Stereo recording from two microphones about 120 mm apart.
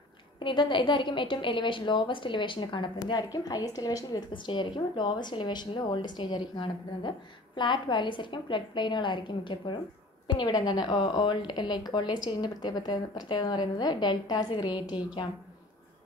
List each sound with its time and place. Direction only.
0.4 s a woman's voice: 45° left (ahead or behind)
4.3 s a woman's voice: 40° left (ahead or behind)